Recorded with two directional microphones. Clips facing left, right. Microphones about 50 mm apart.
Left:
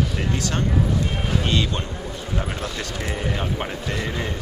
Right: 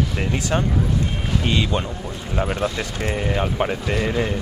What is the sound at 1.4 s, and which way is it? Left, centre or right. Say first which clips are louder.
Speech: right 5 dB; centre.